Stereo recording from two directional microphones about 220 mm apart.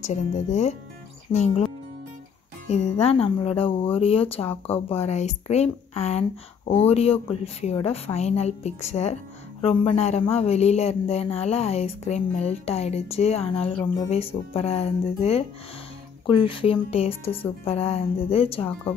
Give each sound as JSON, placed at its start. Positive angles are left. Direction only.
{"t": 0.0, "sound": "speech", "side_deg": 30}
{"t": 2.7, "sound": "speech", "side_deg": 25}